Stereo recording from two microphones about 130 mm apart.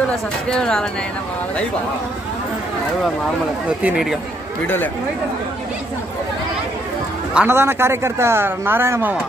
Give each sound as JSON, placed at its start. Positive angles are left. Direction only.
{"t": 0.5, "sound": "speech", "side_deg": 5}
{"t": 3.8, "sound": "speech", "side_deg": -5}
{"t": 7.4, "sound": "speech", "side_deg": -20}